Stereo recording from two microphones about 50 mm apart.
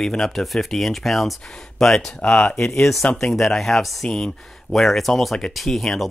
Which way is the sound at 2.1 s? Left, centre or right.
Left.